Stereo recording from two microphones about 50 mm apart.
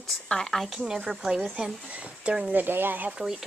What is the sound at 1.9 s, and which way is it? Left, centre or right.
Speech, right.